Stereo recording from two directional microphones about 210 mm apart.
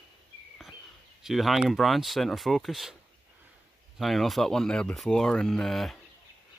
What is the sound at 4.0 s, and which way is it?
Speech, centre (ahead or behind).